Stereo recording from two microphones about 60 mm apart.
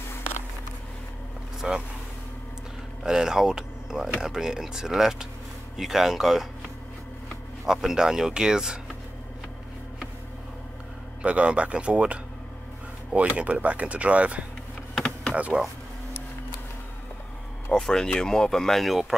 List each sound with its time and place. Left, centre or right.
1.6 s speech: centre
3.0 s a sound: centre
4.2 s speech: centre
7.6 s speech: centre
11.2 s speech: right
15.0 s power windows: centre
15.3 s speech: right
17.7 s speech: centre